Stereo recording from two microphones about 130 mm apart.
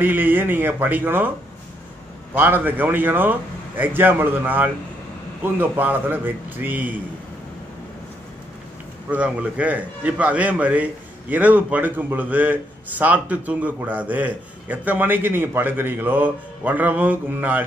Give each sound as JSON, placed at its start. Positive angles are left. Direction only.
{"t": 0.0, "sound": "a man's voice", "side_deg": -15}
{"t": 2.3, "sound": "a man's voice", "side_deg": -15}
{"t": 9.1, "sound": "a man's voice", "side_deg": -10}